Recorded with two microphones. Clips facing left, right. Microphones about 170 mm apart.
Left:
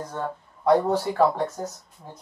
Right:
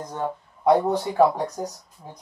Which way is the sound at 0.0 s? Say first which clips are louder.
Right 2 dB; 15° right (ahead or behind).